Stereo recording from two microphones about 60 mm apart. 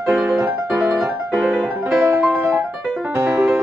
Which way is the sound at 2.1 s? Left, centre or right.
Right.